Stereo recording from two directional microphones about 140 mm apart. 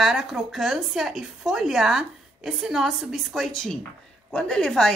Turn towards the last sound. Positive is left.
turn(degrees=5)  # may be behind; listen again after turning